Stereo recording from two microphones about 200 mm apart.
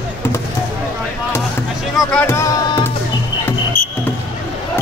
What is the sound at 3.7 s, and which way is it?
Music, 45° left (ahead or behind).